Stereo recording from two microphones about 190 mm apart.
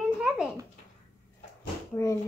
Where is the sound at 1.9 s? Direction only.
15° left (ahead or behind).